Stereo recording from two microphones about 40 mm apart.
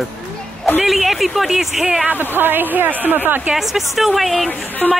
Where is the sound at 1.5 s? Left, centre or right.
Centre.